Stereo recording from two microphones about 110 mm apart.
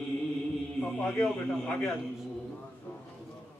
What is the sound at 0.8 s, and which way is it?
Mantra, 5° left (ahead or behind).